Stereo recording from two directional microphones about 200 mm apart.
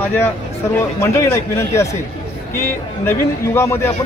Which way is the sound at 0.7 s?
10° left (ahead or behind).